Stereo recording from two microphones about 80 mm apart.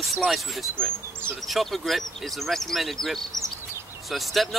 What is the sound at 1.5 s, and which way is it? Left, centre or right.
Speech, centre.